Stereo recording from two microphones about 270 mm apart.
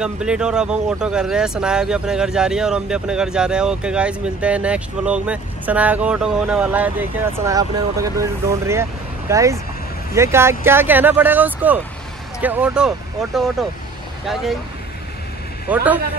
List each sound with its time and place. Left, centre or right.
0.0 s speech: centre
15.7 s speech: centre